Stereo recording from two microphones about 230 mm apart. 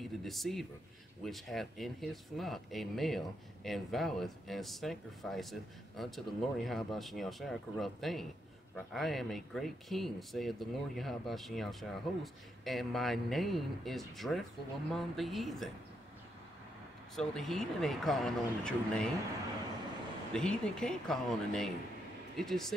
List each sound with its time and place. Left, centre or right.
0.0 s speech: centre
17.1 s speech: centre
20.3 s speech: centre